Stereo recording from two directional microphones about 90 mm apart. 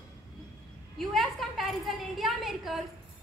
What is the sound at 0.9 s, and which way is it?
A woman's voice, 5° left (ahead or behind).